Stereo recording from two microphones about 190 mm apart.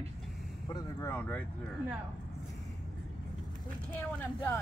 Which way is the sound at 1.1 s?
10° left (ahead or behind).